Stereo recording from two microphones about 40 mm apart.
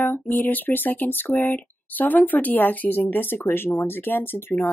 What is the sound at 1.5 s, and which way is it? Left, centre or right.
Speech, left.